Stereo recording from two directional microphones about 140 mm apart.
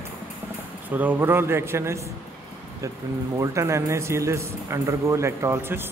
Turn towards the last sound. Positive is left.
turn(degrees=-15)  # may be behind; listen again after turning